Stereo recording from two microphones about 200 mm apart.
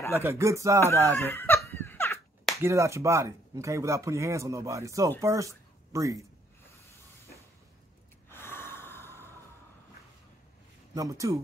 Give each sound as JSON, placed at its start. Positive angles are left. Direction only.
{"t": 0.2, "sound": "speech", "side_deg": -15}
{"t": 1.1, "sound": "a sound", "side_deg": 10}
{"t": 2.6, "sound": "speech", "side_deg": -15}
{"t": 8.3, "sound": "gasp", "side_deg": 10}
{"t": 11.0, "sound": "speech", "side_deg": -15}